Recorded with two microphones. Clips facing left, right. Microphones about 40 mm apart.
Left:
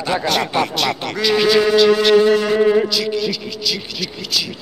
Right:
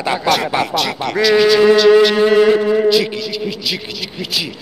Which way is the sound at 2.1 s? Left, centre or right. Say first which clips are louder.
Right 2 dB; centre.